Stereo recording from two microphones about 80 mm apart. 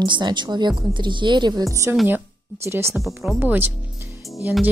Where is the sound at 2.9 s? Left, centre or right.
Centre.